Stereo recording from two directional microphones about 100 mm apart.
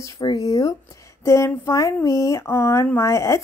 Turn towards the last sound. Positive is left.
turn(degrees=30)  # may be behind; listen again after turning